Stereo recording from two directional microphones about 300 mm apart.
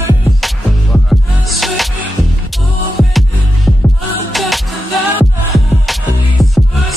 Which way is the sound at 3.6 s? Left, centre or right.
Centre.